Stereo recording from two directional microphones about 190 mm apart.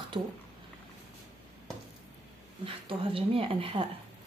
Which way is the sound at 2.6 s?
30° right (ahead or behind).